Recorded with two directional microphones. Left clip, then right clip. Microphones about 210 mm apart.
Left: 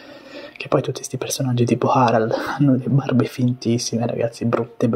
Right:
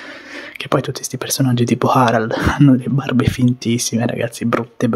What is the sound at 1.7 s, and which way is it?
Speech, 20° right (ahead or behind).